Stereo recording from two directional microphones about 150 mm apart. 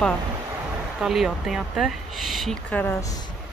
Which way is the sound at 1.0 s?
Centre (ahead or behind).